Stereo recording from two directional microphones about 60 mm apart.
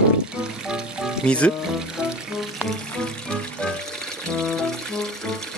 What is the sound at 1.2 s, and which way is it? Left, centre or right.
Speech, centre.